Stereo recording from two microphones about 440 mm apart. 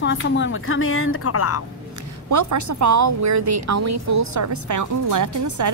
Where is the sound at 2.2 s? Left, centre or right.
Right.